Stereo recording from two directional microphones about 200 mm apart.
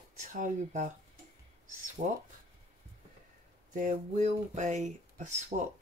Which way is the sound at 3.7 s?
40° right (ahead or behind).